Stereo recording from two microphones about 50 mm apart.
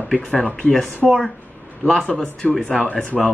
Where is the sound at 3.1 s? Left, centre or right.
Centre.